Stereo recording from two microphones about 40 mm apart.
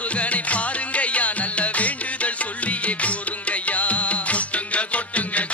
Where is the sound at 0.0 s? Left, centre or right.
Left.